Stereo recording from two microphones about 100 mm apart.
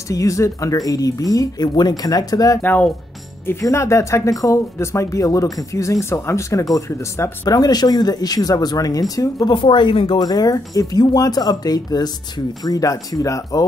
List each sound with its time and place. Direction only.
0.1 s speech: 35° left (ahead or behind)
2.6 s speech: 20° left (ahead or behind)
3.6 s speech: 30° left (ahead or behind)